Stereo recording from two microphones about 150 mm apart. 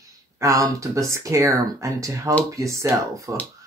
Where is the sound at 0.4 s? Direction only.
20° right (ahead or behind).